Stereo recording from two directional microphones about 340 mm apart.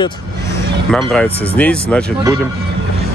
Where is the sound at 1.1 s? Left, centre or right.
Centre.